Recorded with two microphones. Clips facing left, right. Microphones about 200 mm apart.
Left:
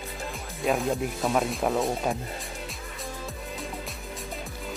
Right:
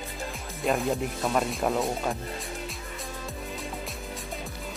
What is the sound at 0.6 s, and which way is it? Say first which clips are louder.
Speech: left 1 dB; centre (ahead or behind).